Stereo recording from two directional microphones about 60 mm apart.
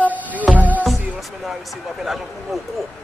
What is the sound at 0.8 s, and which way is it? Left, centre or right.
A man's voice, centre.